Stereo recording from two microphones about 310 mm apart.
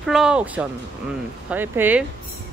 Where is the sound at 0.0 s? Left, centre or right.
Centre.